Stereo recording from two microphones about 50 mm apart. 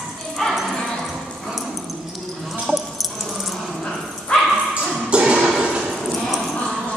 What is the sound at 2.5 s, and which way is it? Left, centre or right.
Dog, centre.